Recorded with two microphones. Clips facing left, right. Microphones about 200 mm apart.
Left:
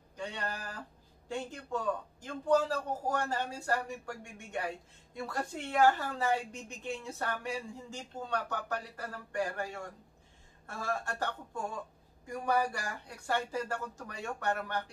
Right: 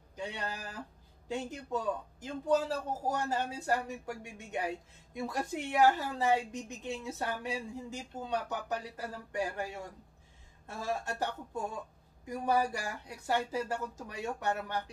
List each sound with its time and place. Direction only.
0.1 s speech: 15° right (ahead or behind)